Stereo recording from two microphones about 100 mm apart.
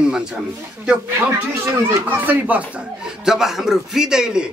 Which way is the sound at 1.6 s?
25° right (ahead or behind).